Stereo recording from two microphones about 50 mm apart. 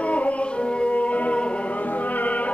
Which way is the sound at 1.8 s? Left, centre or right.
Left.